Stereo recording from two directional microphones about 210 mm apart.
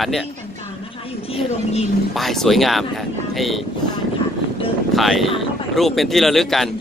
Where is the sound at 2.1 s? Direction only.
Centre (ahead or behind).